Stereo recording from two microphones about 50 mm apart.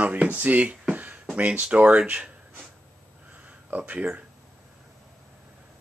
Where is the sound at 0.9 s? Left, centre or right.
Right.